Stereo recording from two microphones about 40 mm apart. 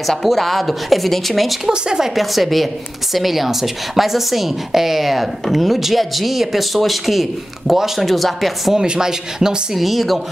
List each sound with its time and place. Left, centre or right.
0.0 s a woman's voice: centre
1.7 s speech: centre
2.1 s a woman's voice: centre
8.7 s speech: centre
9.8 s a woman's voice: centre